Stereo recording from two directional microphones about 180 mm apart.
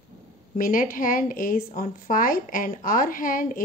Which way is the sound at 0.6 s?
50° left (ahead or behind).